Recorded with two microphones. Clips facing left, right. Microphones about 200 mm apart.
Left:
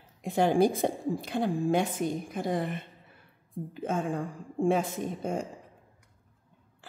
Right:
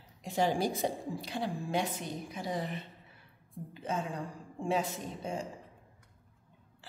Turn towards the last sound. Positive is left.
turn(degrees=50)  # may be behind; listen again after turning